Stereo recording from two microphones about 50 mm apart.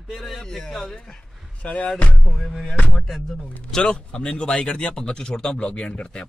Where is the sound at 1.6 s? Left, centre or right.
Left.